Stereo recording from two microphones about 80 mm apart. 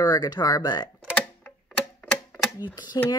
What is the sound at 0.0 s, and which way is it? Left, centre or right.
Speech, left.